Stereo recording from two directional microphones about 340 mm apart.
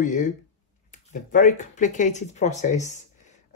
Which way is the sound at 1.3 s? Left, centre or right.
Left.